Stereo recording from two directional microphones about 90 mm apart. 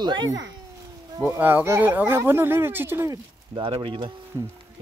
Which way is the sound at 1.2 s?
25° right (ahead or behind).